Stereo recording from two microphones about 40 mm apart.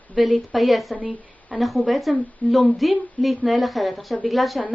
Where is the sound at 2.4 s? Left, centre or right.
Left.